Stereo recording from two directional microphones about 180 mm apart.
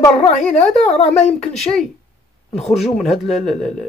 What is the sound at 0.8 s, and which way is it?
Speech, 35° left (ahead or behind).